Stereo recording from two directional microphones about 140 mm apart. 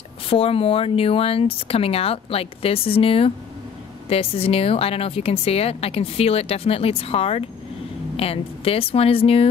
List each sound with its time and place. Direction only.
0.3 s speech: 40° left (ahead or behind)